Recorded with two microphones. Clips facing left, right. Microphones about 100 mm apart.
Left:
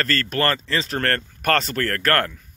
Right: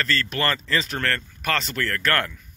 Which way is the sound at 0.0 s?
45° left (ahead or behind).